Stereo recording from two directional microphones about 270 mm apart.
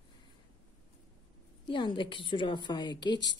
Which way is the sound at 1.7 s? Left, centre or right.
Centre.